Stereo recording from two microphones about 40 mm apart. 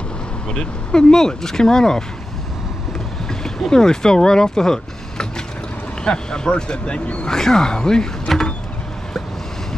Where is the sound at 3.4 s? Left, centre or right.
Centre.